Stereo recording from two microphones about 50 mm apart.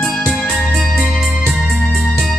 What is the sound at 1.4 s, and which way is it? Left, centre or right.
Music, centre.